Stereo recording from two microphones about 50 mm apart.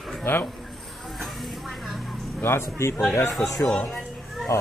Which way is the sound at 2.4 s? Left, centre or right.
Left.